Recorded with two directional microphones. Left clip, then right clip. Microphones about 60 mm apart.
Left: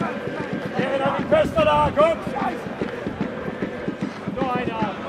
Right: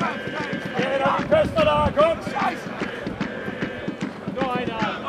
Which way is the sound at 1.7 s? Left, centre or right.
Centre.